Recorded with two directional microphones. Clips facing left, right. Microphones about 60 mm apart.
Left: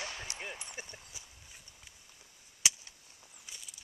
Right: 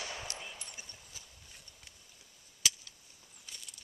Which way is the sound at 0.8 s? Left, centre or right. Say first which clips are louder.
Left 6 dB; left.